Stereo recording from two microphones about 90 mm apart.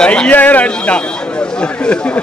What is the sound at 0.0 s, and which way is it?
A man's voice, 10° left (ahead or behind).